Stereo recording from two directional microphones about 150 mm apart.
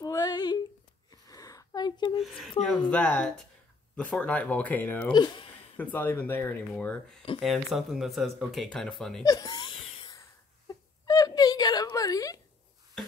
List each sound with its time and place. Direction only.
0.0 s female singing: 25° left (ahead or behind)
1.1 s a sound: 25° left (ahead or behind)
2.1 s speech: centre (ahead or behind)
5.1 s speech: 30° left (ahead or behind)
5.8 s speech: 10° left (ahead or behind)
9.2 s laughter: 25° left (ahead or behind)
10.7 s whimper: 25° left (ahead or behind)